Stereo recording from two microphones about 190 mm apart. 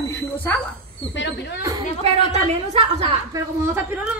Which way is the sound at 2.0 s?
35° right (ahead or behind).